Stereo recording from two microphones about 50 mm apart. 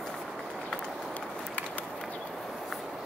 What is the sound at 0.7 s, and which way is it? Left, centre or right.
Run, left.